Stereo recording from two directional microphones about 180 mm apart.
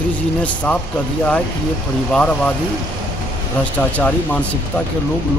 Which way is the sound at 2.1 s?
5° left (ahead or behind).